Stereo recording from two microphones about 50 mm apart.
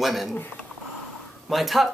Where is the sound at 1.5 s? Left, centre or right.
Centre.